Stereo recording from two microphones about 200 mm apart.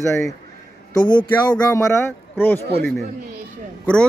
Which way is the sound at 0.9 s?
20° left (ahead or behind).